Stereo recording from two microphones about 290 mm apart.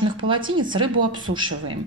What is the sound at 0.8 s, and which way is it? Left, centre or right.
Speech, right.